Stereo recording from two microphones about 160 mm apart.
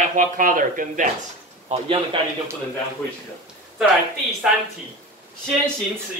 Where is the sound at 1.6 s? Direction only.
35° right (ahead or behind).